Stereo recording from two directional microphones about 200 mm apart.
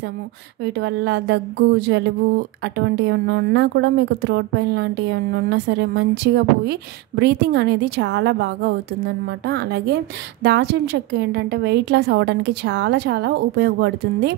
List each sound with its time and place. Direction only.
0.7 s speech: 60° right (ahead or behind)